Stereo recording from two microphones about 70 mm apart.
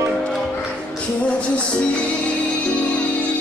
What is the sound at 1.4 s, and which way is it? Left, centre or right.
Music, centre.